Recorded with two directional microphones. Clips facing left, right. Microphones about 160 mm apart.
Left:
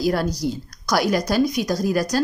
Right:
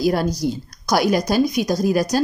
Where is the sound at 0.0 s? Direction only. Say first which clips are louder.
Right 2 dB; 15° right (ahead or behind).